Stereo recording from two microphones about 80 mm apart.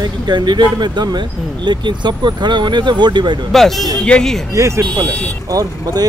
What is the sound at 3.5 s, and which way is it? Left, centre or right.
Speech, centre.